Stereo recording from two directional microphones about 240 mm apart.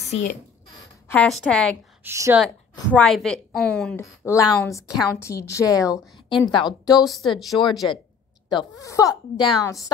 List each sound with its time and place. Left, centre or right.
0.0 s speech: left
1.0 s a woman's voice: centre
2.0 s a woman's voice: centre
3.0 s a woman's voice: centre
7.1 s a woman's voice: centre
8.5 s a woman's voice: centre